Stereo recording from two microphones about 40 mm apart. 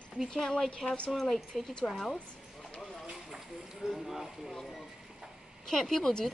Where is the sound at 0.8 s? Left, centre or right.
Left.